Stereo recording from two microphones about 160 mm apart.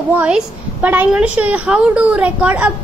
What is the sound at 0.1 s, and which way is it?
A woman's voice, 5° right (ahead or behind).